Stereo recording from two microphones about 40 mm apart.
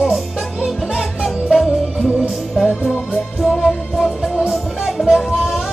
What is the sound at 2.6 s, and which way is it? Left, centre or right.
Music, left.